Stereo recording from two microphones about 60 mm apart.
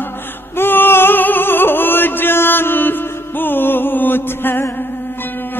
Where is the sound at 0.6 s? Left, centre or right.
Left.